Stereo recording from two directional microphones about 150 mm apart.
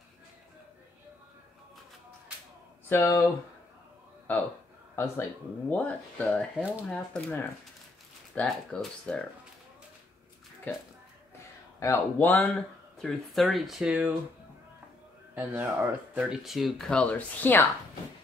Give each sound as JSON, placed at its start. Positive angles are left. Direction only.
{"t": 2.9, "sound": "speech", "side_deg": 15}
{"t": 4.3, "sound": "speech", "side_deg": 10}
{"t": 10.7, "sound": "speech", "side_deg": 15}
{"t": 15.3, "sound": "speech", "side_deg": -15}